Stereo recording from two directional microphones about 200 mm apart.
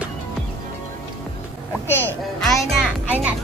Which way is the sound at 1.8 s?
10° left (ahead or behind).